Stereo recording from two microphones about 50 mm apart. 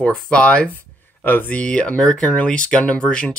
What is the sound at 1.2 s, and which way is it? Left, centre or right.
Speech, left.